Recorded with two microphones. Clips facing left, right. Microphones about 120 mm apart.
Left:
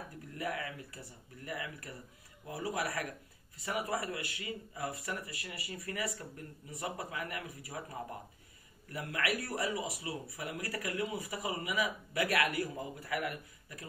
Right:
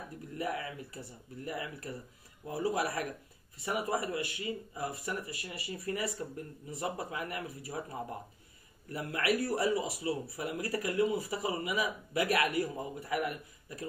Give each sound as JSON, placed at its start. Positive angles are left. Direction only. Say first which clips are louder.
{"t": 0.4, "sound": "speech", "louder": "right 2 dB", "side_deg": -25}